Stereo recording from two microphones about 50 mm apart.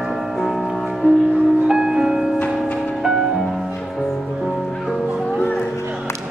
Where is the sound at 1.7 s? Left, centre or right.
Centre.